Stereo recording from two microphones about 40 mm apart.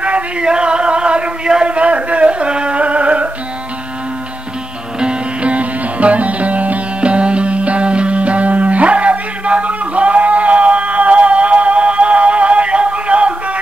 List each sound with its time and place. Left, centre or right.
0.0 s music: right
0.5 s a sound: right
5.0 s music: right